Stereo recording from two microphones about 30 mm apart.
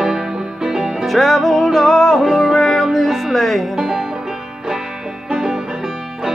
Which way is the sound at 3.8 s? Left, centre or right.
Centre.